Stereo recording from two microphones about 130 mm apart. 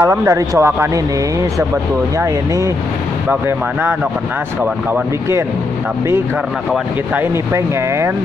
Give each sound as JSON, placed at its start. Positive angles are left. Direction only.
{"t": 0.0, "sound": "speech", "side_deg": -20}
{"t": 2.1, "sound": "speech", "side_deg": -25}
{"t": 7.2, "sound": "speech", "side_deg": -20}